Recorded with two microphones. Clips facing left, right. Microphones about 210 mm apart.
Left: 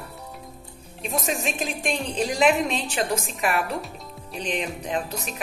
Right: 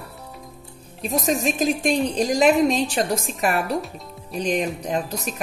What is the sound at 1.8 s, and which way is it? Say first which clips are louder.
A woman's voice: right 2 dB; 40° right (ahead or behind).